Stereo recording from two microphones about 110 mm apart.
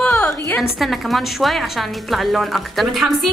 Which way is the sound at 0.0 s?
10° left (ahead or behind).